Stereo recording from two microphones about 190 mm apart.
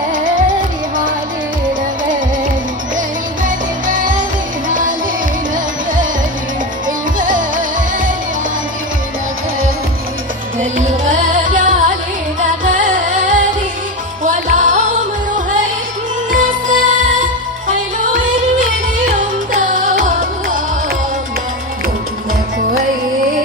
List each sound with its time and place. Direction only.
0.1 s music: 45° right (ahead or behind)
3.4 s music: 45° right (ahead or behind)
7.2 s music: 45° right (ahead or behind)
10.6 s music: 40° right (ahead or behind)
16.3 s music: 45° right (ahead or behind)